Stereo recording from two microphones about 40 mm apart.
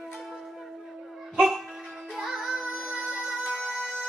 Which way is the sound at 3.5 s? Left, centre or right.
Centre.